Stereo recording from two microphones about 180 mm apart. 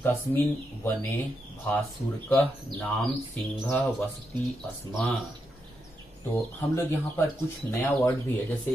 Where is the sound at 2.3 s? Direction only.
10° left (ahead or behind).